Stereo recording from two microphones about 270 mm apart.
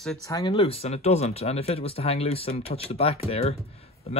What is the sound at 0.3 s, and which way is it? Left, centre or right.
Speech, centre.